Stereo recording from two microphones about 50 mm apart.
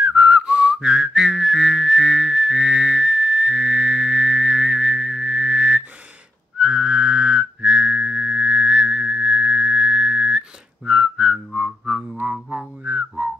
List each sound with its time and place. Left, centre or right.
0.0 s whistling: centre
6.6 s whistling: centre